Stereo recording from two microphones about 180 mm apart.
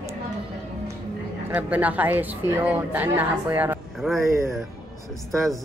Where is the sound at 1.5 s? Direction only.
10° right (ahead or behind).